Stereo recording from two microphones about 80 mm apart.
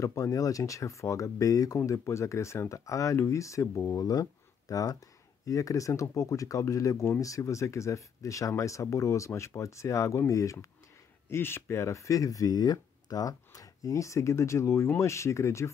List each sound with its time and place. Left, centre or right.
0.0 s speech: left